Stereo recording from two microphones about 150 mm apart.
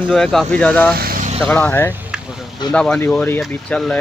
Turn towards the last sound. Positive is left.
turn(degrees=5)  # may be behind; listen again after turning